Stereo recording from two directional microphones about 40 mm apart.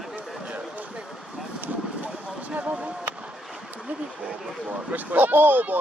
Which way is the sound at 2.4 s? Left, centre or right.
Right.